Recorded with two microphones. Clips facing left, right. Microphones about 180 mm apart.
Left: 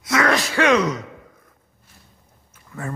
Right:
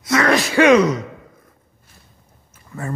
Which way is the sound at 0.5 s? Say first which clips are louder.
Right 8 dB; 10° right (ahead or behind).